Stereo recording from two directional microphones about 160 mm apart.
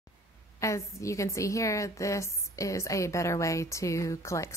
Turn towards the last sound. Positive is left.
turn(degrees=20)  # may be behind; listen again after turning